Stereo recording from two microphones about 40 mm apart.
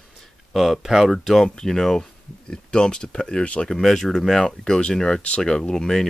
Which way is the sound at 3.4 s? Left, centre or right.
Left.